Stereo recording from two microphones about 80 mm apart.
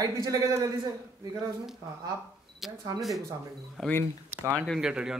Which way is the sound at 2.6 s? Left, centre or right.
Centre.